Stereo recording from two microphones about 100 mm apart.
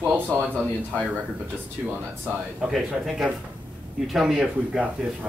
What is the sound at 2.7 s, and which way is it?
Speech, centre (ahead or behind).